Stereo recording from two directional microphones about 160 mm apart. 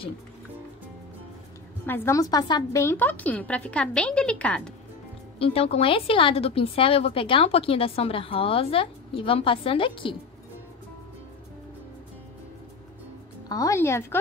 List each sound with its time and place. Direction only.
1.9 s a woman's voice: 20° left (ahead or behind)
5.4 s speech: 35° left (ahead or behind)
13.5 s speech: 20° left (ahead or behind)